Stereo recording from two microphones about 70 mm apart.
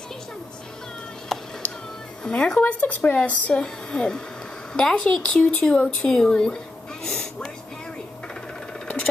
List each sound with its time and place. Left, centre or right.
1.3 s music: centre
2.2 s speech: centre
2.6 s a woman's voice: left; by 5.8 s centre
6.0 s a sound: centre
8.8 s engine: centre